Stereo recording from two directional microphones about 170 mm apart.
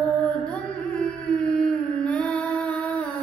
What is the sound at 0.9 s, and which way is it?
Music, 5° left (ahead or behind).